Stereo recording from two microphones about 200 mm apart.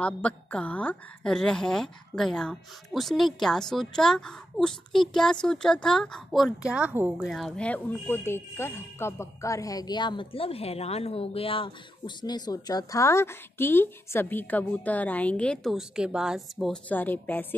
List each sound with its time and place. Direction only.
0.0 s a woman's voice: 5° left (ahead or behind)